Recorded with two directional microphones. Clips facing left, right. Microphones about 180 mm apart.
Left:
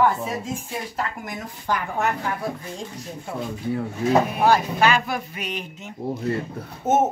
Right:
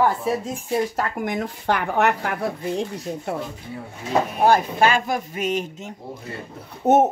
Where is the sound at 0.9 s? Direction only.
55° right (ahead or behind).